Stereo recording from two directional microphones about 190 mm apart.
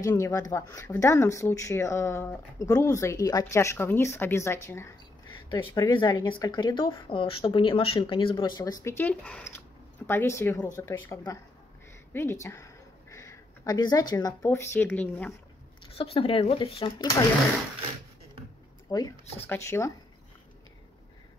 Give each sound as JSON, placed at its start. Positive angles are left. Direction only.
{"t": 0.0, "sound": "speech", "side_deg": 15}
{"t": 16.0, "sound": "speech", "side_deg": 30}
{"t": 18.9, "sound": "speech", "side_deg": 20}